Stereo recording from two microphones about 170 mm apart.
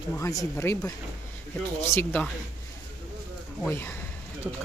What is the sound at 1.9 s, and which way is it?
Speech, 10° left (ahead or behind).